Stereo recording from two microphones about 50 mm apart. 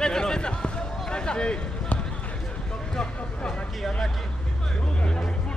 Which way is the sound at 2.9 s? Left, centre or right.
Centre.